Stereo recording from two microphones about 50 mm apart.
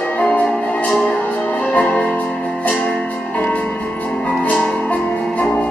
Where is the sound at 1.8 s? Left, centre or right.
Left.